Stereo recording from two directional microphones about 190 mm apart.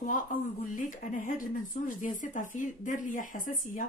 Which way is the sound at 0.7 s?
45° left (ahead or behind).